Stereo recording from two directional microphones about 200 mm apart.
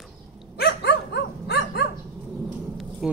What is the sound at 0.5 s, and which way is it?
Dog, 55° left (ahead or behind).